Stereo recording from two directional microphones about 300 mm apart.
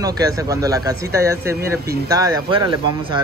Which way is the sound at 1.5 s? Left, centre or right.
Right.